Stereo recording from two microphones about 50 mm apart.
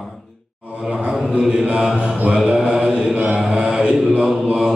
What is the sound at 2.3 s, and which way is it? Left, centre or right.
Mantra, centre.